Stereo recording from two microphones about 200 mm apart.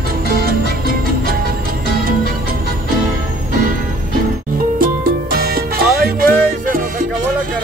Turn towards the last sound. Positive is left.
turn(degrees=-45)  # may be behind; listen again after turning